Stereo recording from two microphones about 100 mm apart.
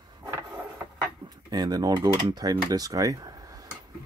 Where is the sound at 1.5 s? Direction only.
40° right (ahead or behind).